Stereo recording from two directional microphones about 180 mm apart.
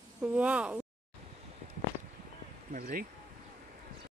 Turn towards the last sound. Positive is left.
turn(degrees=-50)  # may be behind; listen again after turning